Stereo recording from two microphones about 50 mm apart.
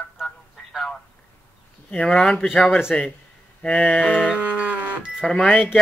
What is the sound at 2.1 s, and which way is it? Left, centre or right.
Speech, centre.